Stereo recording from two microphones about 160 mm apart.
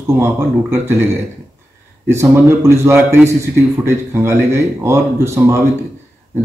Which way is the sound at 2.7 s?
15° right (ahead or behind).